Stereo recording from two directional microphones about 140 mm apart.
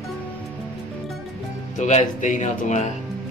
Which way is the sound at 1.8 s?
60° left (ahead or behind).